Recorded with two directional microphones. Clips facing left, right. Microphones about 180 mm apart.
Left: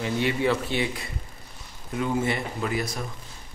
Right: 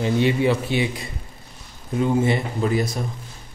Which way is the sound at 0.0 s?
20° right (ahead or behind).